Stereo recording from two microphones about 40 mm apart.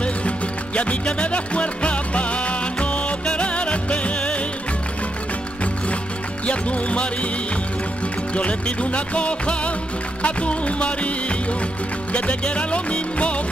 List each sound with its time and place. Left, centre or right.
0.7 s music: left
6.4 s music: left
8.4 s music: left